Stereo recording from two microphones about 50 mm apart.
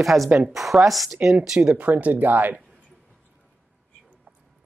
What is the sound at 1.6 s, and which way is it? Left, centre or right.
Speech, right.